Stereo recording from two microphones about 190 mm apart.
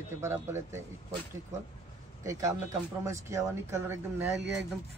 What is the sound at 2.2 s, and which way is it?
Speech, 15° right (ahead or behind).